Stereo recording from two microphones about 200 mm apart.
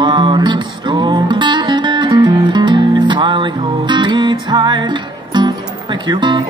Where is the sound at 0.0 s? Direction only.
25° right (ahead or behind).